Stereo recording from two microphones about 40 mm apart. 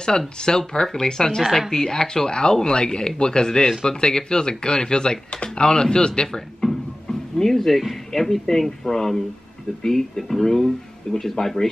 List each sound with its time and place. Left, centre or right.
0.4 s speech: centre
1.4 s a woman's voice: centre
1.7 s speech: centre